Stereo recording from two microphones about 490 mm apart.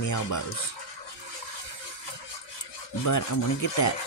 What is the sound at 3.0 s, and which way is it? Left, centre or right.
Speech, left.